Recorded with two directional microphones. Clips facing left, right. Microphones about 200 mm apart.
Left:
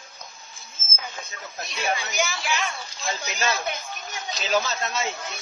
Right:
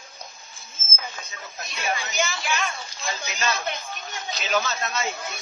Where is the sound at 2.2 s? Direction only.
Centre (ahead or behind).